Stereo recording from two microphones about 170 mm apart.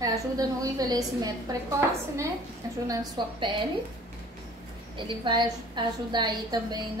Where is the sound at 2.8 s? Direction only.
25° right (ahead or behind).